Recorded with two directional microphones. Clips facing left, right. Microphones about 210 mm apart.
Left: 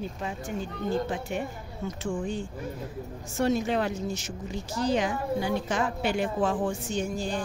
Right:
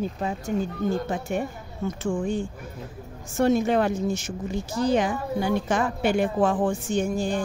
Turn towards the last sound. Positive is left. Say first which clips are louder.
# right 5 dB
turn(degrees=-50)  # may be behind; listen again after turning